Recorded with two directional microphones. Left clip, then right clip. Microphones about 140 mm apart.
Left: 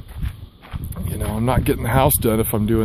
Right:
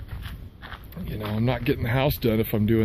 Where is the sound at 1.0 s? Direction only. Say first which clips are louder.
Left 5 dB; 25° left (ahead or behind).